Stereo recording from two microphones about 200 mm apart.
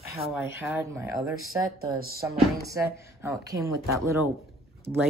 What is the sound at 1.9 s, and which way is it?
Speech, 50° right (ahead or behind).